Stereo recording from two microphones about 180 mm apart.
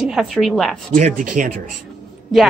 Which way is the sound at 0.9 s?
45° right (ahead or behind).